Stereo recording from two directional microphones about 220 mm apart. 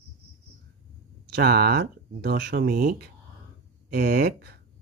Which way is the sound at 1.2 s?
45° right (ahead or behind).